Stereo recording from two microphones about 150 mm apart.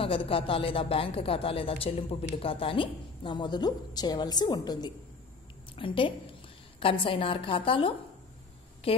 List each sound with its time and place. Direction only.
0.0 s speech: 35° left (ahead or behind)